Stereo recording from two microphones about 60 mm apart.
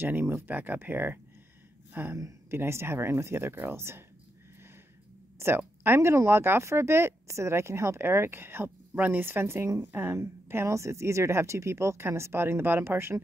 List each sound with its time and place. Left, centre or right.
0.0 s speech: right
2.5 s speech: right
5.4 s speech: right